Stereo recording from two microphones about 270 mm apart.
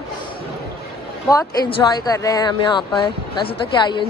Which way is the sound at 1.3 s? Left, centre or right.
Centre.